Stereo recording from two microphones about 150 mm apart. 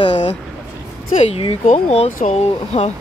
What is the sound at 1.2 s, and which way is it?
Speech, 40° left (ahead or behind).